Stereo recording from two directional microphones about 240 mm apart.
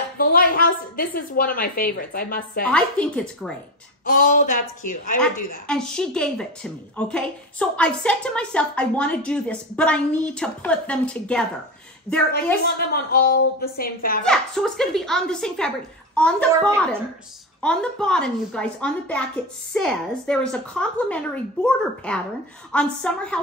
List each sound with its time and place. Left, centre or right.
0.2 s a woman's voice: left
2.6 s a woman's voice: centre
4.0 s a woman's voice: left
5.7 s a woman's voice: centre
12.7 s a woman's voice: left
14.2 s a woman's voice: centre